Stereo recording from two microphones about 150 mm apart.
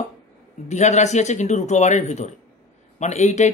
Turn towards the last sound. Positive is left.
turn(degrees=50)  # may be behind; listen again after turning